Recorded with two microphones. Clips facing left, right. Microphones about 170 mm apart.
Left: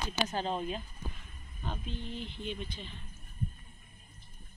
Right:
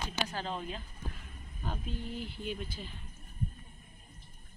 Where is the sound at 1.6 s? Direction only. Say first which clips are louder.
Right 1 dB; 10° right (ahead or behind).